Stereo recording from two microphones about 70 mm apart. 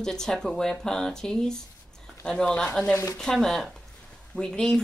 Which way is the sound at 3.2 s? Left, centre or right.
Centre.